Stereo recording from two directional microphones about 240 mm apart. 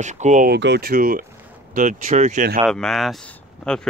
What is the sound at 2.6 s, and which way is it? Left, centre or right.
Speech, centre.